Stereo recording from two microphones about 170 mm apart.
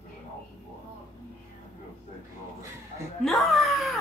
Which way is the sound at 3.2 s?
Centre (ahead or behind).